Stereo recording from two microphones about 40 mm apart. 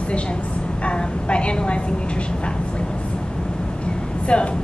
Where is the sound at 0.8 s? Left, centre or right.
Left.